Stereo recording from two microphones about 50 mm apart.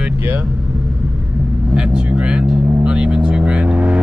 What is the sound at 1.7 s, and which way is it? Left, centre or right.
Speech, right.